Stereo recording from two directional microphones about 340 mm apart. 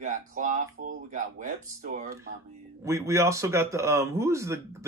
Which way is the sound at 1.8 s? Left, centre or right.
Right.